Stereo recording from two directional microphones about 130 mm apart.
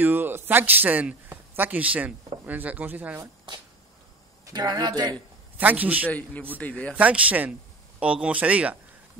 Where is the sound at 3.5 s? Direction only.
35° right (ahead or behind).